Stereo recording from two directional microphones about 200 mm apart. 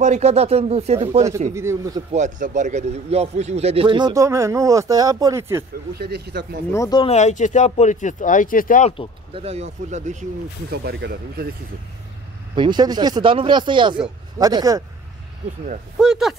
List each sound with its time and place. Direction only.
0.0 s speech: 35° right (ahead or behind)
1.5 s speech: 15° right (ahead or behind)
2.1 s a man's voice: 40° right (ahead or behind); by 5.7 s 10° right (ahead or behind)
5.9 s speech: 55° right (ahead or behind)
6.7 s speech: 20° left (ahead or behind)
7.1 s speech: 35° left (ahead or behind)
9.3 s speech: 30° right (ahead or behind)
10.7 s speech: 55° right (ahead or behind)
12.5 s a man's voice: 20° right (ahead or behind)
16.0 s speech: centre (ahead or behind)